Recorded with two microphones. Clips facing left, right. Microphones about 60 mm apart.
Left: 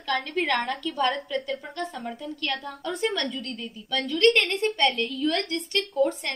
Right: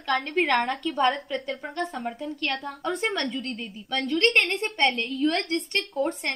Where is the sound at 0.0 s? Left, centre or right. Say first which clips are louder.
Right 2 dB; right.